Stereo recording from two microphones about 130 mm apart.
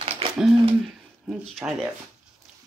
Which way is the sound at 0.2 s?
45° right (ahead or behind).